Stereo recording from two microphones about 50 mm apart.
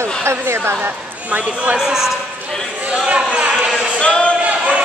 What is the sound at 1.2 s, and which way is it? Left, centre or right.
Speech, right.